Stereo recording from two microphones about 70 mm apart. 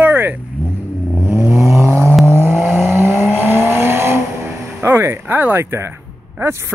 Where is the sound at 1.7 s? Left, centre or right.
Right.